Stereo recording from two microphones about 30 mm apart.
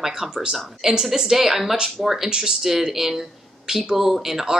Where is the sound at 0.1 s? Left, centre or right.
Right.